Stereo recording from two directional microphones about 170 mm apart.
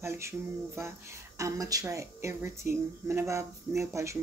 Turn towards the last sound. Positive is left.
turn(degrees=-15)  # may be behind; listen again after turning